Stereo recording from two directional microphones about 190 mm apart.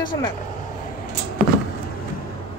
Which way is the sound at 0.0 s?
25° left (ahead or behind).